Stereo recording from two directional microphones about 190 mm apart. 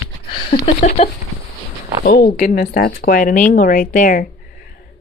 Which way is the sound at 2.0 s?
55° left (ahead or behind).